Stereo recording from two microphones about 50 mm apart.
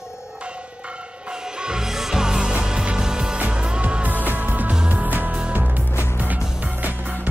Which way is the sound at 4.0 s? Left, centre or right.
Right.